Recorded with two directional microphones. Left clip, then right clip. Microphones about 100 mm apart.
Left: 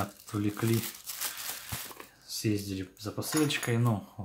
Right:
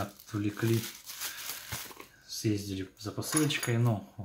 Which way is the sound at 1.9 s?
30° left (ahead or behind).